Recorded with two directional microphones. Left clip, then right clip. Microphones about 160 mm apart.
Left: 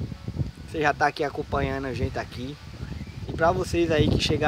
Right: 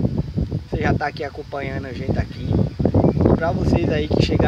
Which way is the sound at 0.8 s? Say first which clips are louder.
Even; 15° left (ahead or behind).